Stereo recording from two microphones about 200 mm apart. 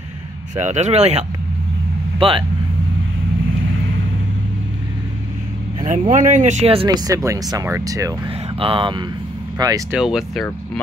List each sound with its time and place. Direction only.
0.6 s speech: 35° right (ahead or behind)
5.9 s speech: 40° right (ahead or behind); by 8.1 s 15° right (ahead or behind)
8.5 s speech: 25° right (ahead or behind)
9.9 s speech: centre (ahead or behind)